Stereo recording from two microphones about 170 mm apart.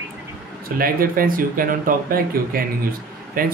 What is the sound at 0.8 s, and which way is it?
Speech, 60° right (ahead or behind).